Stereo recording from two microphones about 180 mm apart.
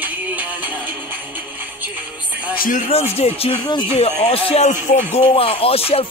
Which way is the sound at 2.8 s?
35° left (ahead or behind).